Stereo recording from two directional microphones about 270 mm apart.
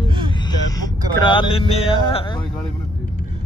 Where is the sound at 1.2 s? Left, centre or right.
Centre.